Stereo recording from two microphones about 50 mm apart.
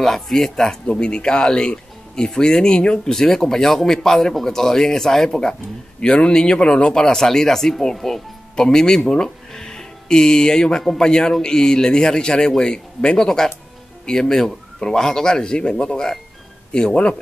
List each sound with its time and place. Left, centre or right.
0.0 s speech: centre
0.8 s speech: centre